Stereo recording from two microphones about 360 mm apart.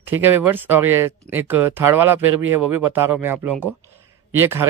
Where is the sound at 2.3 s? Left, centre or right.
Right.